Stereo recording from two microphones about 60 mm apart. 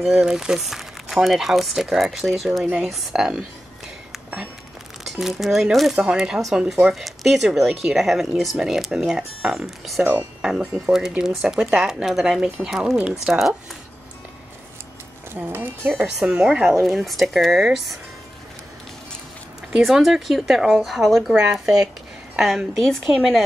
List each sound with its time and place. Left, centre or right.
0.0 s speech: centre
5.0 s speech: centre
6.9 s speech: centre
10.0 s speech: centre
13.3 s speech: right
15.4 s speech: right
16.2 s speech: centre
16.8 s speech: centre
19.8 s speech: centre
23.1 s speech: centre